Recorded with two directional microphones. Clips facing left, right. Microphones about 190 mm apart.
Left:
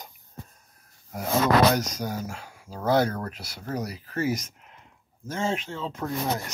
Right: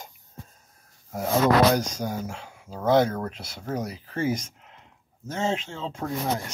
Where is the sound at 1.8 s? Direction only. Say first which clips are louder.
Right 1 dB; 25° right (ahead or behind).